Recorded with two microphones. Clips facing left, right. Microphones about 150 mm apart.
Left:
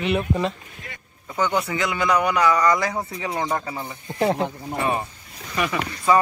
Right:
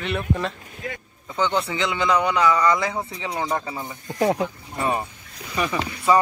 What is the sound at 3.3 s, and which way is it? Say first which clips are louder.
Speech: even; 10° right (ahead or behind).